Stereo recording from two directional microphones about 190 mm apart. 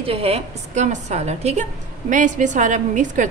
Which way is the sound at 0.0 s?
30° right (ahead or behind).